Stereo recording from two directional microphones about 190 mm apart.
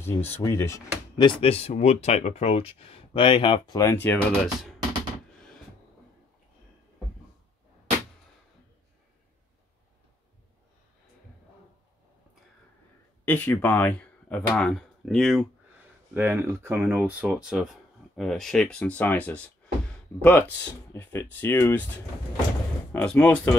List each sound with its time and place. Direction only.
0.0 s speech: 10° left (ahead or behind)
13.2 s speech: 10° left (ahead or behind)